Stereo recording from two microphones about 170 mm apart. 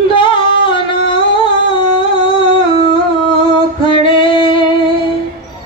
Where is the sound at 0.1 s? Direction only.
30° left (ahead or behind).